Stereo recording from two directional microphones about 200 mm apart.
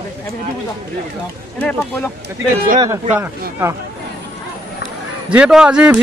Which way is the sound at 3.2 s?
15° right (ahead or behind).